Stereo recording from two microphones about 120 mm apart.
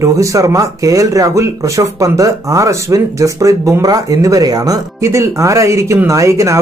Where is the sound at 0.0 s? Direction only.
25° right (ahead or behind).